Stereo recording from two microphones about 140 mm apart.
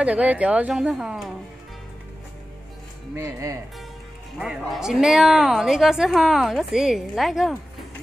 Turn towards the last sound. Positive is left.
turn(degrees=0)  # may be behind; listen again after turning